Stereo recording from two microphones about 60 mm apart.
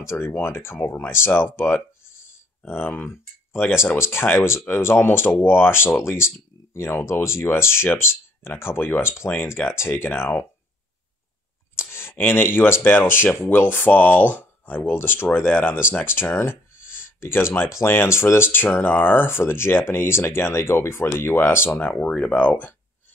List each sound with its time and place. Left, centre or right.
0.1 s speech: left
0.8 s speech: left
1.1 s speech: left
11.7 s speech: left
21.7 s speech: left